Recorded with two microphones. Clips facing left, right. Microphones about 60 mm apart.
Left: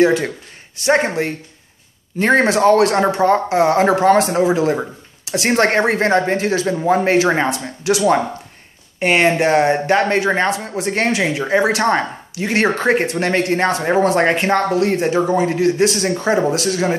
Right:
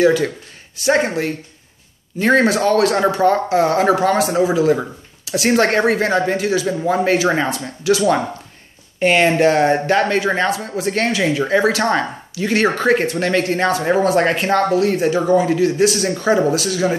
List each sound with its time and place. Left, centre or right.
0.0 s speech: left
7.4 s speech: left